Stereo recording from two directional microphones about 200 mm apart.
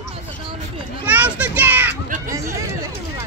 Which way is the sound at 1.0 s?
5° right (ahead or behind).